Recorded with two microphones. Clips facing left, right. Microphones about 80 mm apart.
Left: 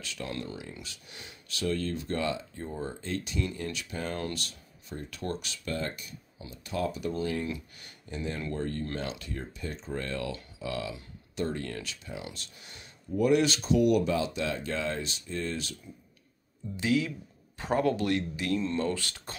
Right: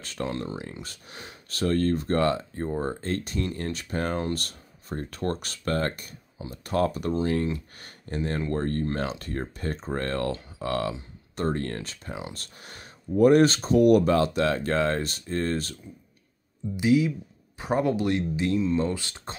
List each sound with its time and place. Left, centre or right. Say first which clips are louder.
0.0 s speech: right 7 dB; right
0.3 s speech: right 5 dB; right
0.8 s speech: right 5 dB; right
16.7 s speech: right 6 dB; centre